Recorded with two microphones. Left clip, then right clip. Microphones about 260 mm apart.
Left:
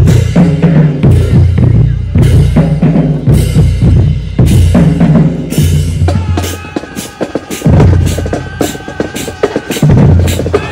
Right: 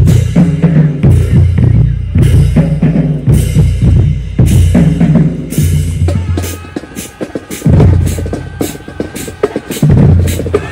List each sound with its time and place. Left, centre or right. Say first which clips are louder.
0.0 s drum: left 2 dB; left
4.4 s music: left 2 dB; left